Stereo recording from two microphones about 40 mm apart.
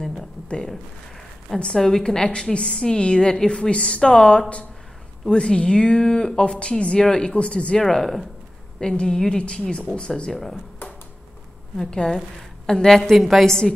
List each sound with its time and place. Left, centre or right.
0.0 s a sound: centre
1.6 s a woman's voice: centre
7.3 s a woman's voice: left
7.8 s a woman's voice: centre
10.3 s a woman's voice: centre
11.7 s a woman's voice: centre
13.1 s a woman's voice: centre